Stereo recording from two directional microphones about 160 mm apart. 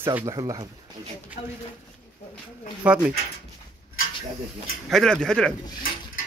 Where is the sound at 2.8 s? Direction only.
10° right (ahead or behind).